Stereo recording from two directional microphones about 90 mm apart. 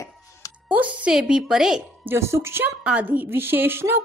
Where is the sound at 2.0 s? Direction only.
30° right (ahead or behind).